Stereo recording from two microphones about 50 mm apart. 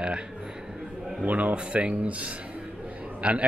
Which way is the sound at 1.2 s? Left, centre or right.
Right.